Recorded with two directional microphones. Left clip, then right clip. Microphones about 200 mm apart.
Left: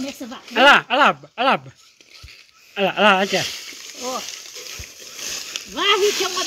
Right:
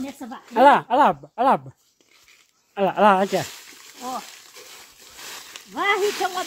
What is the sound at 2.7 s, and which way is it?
Speech, 30° right (ahead or behind).